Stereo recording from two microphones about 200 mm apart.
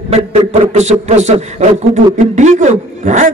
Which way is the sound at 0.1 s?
35° right (ahead or behind).